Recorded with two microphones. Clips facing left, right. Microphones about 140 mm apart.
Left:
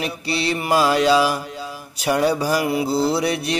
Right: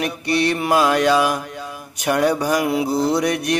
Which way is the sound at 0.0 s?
60° right (ahead or behind).